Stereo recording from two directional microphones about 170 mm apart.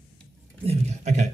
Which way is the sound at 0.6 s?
40° right (ahead or behind).